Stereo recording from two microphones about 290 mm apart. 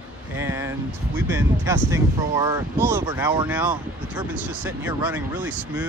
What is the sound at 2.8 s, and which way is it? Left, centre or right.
Speech, centre.